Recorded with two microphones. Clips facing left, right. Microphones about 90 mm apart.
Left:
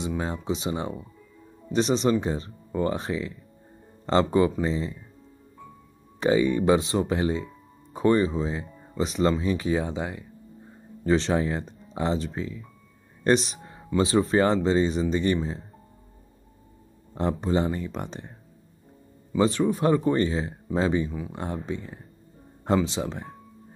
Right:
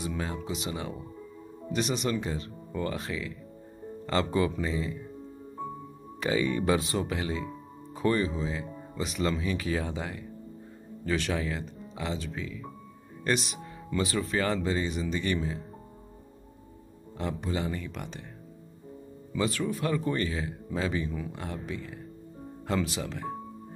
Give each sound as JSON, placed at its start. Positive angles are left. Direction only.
{"t": 0.0, "sound": "speech", "side_deg": 25}
{"t": 6.3, "sound": "speech", "side_deg": 20}
{"t": 17.2, "sound": "speech", "side_deg": 35}
{"t": 19.3, "sound": "speech", "side_deg": 30}